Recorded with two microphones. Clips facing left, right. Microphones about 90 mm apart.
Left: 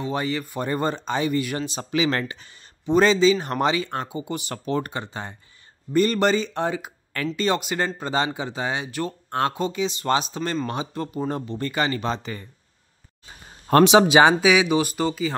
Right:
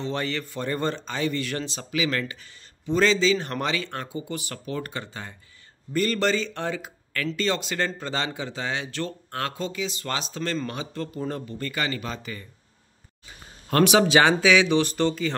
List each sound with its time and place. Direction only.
0.0 s speech: 15° left (ahead or behind)
1.9 s speech: 30° left (ahead or behind)
13.8 s speech: 20° left (ahead or behind)